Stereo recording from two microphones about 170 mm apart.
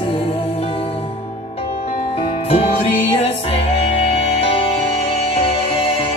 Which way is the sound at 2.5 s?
35° left (ahead or behind).